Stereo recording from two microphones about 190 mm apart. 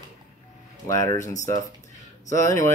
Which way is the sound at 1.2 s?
40° left (ahead or behind).